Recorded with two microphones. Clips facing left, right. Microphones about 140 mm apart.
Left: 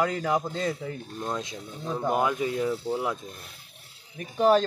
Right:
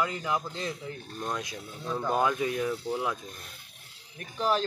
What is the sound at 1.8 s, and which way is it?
Speech, 20° left (ahead or behind).